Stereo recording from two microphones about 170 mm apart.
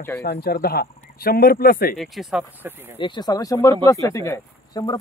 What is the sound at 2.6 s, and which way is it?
Speech, 10° right (ahead or behind).